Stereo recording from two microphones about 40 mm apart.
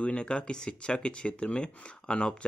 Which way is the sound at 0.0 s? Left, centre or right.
Left.